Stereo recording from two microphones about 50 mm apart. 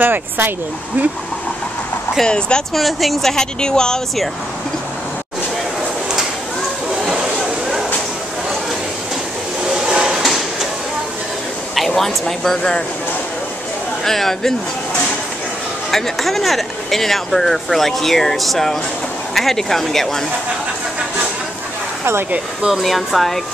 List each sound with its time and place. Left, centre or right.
0.0 s speech: right
2.2 s a woman's voice: centre
2.7 s a woman's voice: centre
7.0 s a sound: centre
9.7 s a sound: centre
10.2 s a sound: centre
11.9 s speech: centre
14.0 s a woman's voice: centre
15.9 s speech: centre
22.8 s speech: centre